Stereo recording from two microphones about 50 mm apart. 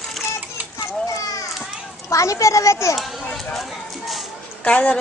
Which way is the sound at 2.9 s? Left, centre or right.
Centre.